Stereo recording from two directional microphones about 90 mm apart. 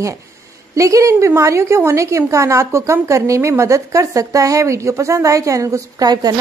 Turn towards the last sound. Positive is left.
turn(degrees=-45)  # may be behind; listen again after turning